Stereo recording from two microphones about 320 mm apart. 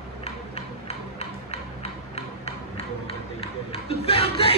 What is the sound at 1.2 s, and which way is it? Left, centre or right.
Music, centre.